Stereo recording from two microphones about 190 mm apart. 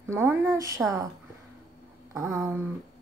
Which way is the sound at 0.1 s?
10° right (ahead or behind).